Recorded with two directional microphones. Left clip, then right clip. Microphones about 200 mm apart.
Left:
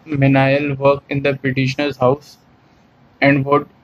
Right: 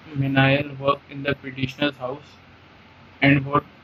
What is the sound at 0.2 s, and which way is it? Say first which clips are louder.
Speech: left 5 dB; 20° left (ahead or behind).